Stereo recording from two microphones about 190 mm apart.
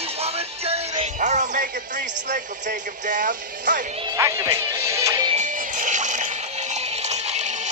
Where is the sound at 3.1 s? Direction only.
45° right (ahead or behind).